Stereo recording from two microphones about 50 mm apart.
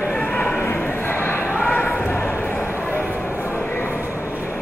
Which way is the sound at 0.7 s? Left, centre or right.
Left.